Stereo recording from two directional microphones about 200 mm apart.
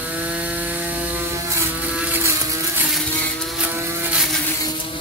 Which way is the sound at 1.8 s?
5° right (ahead or behind).